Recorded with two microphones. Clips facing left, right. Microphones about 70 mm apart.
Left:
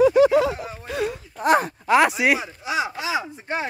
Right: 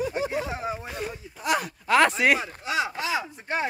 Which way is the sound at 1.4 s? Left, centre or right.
Left.